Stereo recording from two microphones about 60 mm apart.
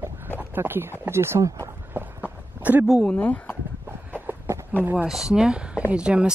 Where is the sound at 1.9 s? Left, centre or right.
Right.